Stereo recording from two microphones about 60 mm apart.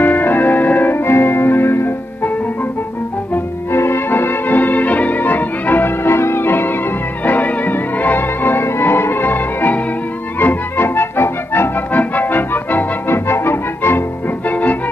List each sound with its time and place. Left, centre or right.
0.0 s music: left
3.7 s music: left
6.0 s organ: left
7.2 s music: left